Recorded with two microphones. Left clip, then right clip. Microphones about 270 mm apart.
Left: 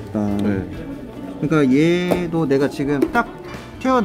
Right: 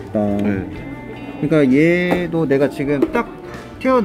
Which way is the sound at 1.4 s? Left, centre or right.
Centre.